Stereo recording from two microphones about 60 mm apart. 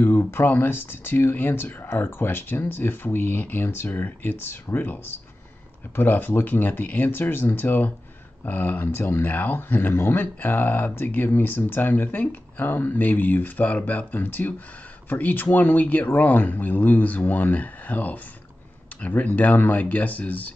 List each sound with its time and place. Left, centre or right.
0.0 s speech: left